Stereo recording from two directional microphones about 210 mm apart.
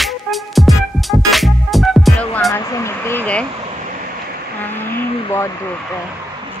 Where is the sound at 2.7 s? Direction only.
10° left (ahead or behind).